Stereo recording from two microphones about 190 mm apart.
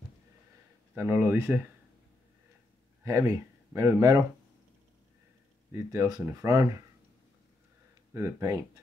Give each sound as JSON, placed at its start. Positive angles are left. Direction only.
{"t": 0.9, "sound": "speech", "side_deg": -10}
{"t": 3.0, "sound": "speech", "side_deg": -15}
{"t": 5.7, "sound": "speech", "side_deg": -15}
{"t": 8.1, "sound": "speech", "side_deg": -15}